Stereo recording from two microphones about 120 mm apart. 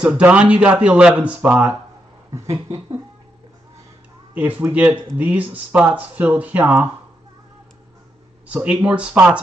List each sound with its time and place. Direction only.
0.0 s speech: 10° right (ahead or behind)
2.3 s a sound: 30° right (ahead or behind)
4.3 s speech: 15° right (ahead or behind)
8.5 s speech: 15° right (ahead or behind)